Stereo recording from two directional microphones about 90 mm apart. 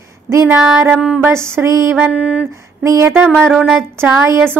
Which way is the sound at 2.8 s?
35° right (ahead or behind).